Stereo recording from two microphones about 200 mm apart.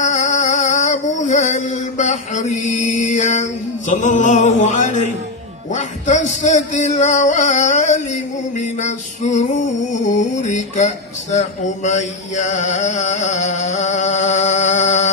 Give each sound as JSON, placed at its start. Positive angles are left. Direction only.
{"t": 0.0, "sound": "music", "side_deg": 35}
{"t": 3.9, "sound": "speech", "side_deg": 35}
{"t": 11.3, "sound": "mantra", "side_deg": 35}